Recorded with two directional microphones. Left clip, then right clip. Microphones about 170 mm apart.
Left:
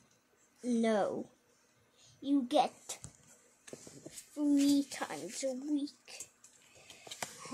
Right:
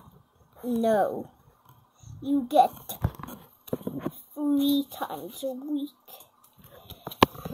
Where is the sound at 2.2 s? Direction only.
15° right (ahead or behind).